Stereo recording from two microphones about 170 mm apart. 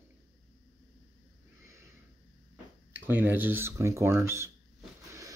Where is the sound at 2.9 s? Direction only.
10° right (ahead or behind).